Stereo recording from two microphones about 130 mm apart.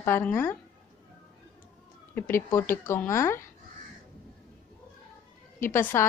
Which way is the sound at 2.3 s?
20° left (ahead or behind).